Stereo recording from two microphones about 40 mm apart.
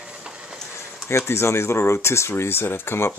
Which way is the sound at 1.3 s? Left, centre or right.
Left.